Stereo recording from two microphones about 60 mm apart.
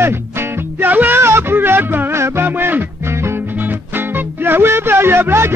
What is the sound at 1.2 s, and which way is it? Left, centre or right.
Music, right.